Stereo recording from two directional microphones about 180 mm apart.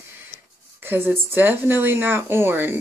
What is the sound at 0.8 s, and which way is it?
A woman's voice, 10° right (ahead or behind).